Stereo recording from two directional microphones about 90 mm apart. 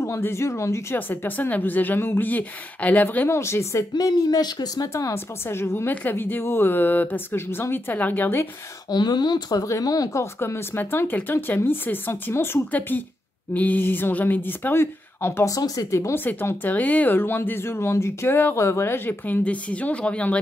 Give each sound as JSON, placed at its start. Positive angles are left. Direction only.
{"t": 0.0, "sound": "speech", "side_deg": 30}
{"t": 3.3, "sound": "speech", "side_deg": 30}
{"t": 3.9, "sound": "speech", "side_deg": 50}
{"t": 4.8, "sound": "speech", "side_deg": 30}
{"t": 8.9, "sound": "speech", "side_deg": 50}
{"t": 10.4, "sound": "speech", "side_deg": 25}
{"t": 15.4, "sound": "speech", "side_deg": 40}
{"t": 16.3, "sound": "speech", "side_deg": 20}